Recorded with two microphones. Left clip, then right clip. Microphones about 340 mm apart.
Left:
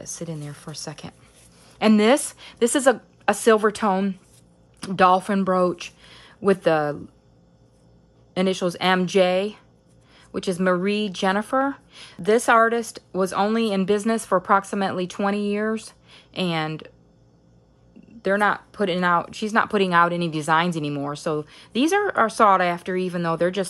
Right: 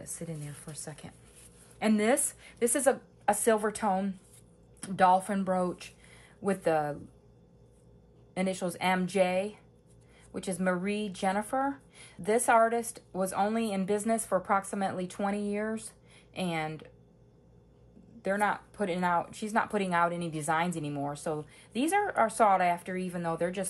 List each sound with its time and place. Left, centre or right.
0.0 s speech: centre
8.4 s speech: left
18.2 s speech: left